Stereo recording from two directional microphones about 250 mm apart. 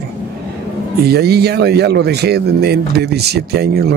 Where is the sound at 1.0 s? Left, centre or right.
Right.